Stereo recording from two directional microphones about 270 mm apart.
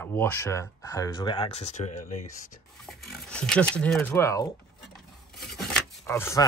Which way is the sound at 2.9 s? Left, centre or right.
Centre.